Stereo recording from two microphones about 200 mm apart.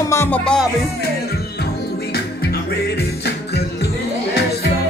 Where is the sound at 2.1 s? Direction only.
55° left (ahead or behind).